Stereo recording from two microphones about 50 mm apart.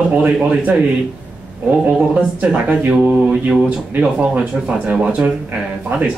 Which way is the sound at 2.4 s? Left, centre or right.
Right.